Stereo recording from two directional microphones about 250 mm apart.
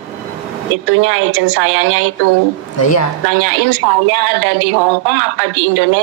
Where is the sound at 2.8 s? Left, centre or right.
Left.